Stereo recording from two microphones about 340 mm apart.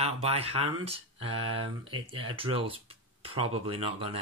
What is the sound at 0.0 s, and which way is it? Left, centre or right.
Speech, centre.